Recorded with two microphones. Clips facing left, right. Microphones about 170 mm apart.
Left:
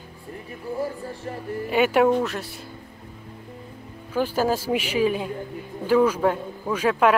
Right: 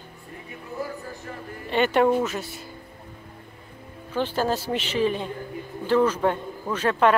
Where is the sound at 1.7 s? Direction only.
5° left (ahead or behind).